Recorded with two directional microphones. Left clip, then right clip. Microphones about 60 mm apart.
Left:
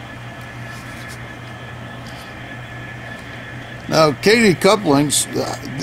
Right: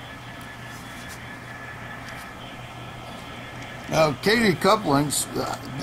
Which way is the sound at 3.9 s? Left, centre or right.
Left.